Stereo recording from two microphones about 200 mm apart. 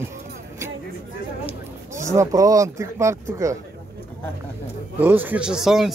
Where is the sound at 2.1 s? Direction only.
15° right (ahead or behind).